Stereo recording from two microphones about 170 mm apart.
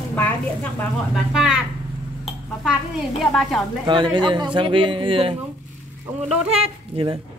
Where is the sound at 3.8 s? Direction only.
30° right (ahead or behind).